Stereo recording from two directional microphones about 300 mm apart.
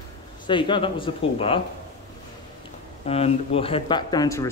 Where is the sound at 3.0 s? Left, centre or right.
Centre.